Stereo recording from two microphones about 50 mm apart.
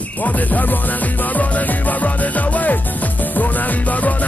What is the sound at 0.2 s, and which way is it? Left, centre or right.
Music, left.